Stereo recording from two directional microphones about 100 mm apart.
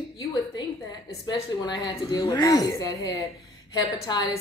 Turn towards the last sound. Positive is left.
turn(degrees=40)  # may be behind; listen again after turning